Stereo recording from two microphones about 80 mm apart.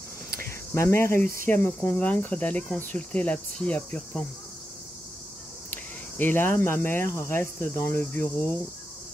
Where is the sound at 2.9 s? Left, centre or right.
Centre.